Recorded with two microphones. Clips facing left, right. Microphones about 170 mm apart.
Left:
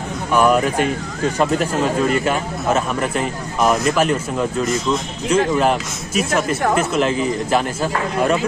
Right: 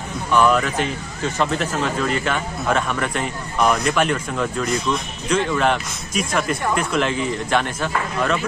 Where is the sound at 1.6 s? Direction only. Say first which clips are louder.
Left 4 dB; 10° left (ahead or behind).